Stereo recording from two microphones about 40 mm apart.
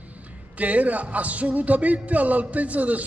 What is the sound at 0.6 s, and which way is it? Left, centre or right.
A man's voice, right.